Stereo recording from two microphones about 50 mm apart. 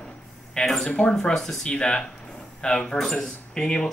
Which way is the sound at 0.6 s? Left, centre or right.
Centre.